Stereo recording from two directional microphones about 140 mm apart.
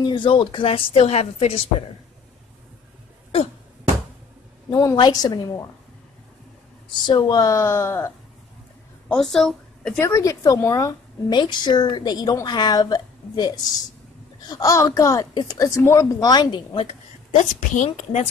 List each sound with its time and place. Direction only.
0.0 s a woman's voice: 35° left (ahead or behind)
4.6 s a woman's voice: 30° left (ahead or behind)
7.1 s a woman's voice: 30° left (ahead or behind)
9.1 s a woman's voice: 5° left (ahead or behind)
9.9 s a woman's voice: 20° left (ahead or behind)
14.5 s a woman's voice: 25° left (ahead or behind)
17.4 s a woman's voice: 60° left (ahead or behind)